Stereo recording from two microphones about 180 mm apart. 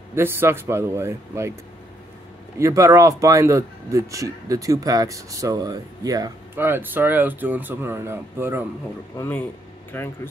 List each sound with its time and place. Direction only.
0.1 s speech: 10° right (ahead or behind)
2.6 s speech: 15° right (ahead or behind)
9.1 s speech: 15° left (ahead or behind)